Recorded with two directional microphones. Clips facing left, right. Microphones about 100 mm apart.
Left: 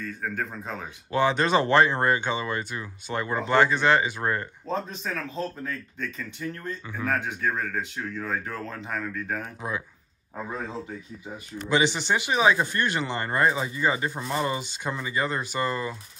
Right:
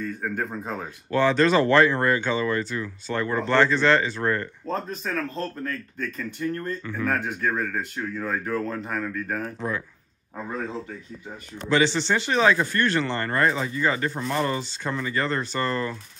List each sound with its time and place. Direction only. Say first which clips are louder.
0.0 s speech: right 3 dB; 5° right (ahead or behind)
1.1 s speech: right 3 dB; 15° left (ahead or behind)
4.7 s speech: right 2 dB; centre (ahead or behind)
7.2 s speech: right 2 dB; centre (ahead or behind)
9.4 s speech: right 4 dB; 15° left (ahead or behind)
11.7 s speech: right 2 dB; 15° left (ahead or behind)